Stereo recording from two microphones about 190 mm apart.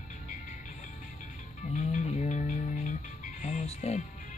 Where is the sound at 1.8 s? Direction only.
40° left (ahead or behind).